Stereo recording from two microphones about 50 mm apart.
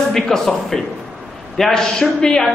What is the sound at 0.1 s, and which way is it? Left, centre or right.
A woman's voice, centre.